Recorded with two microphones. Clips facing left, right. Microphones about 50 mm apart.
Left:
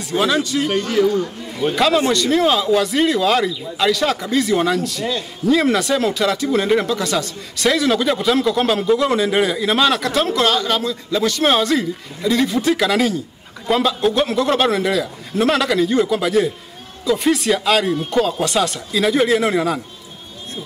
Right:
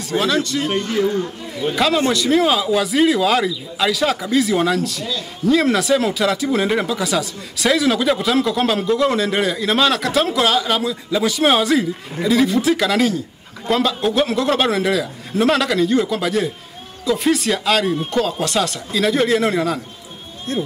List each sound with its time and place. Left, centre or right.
0.3 s a man's voice: centre
0.7 s a man's voice: centre
1.8 s speech: centre